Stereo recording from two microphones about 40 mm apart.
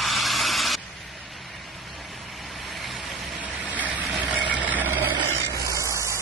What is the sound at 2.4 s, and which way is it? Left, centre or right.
Vehicle, centre.